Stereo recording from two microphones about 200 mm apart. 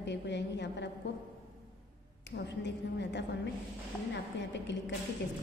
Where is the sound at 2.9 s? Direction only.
60° left (ahead or behind).